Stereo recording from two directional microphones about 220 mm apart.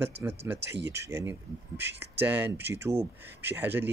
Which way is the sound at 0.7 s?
50° right (ahead or behind).